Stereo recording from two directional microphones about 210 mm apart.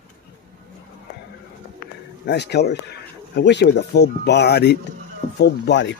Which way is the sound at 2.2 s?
55° left (ahead or behind).